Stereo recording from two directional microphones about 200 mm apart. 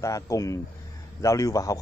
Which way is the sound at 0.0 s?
15° left (ahead or behind).